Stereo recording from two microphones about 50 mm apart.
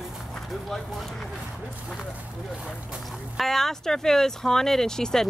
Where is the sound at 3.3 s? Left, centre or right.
Centre.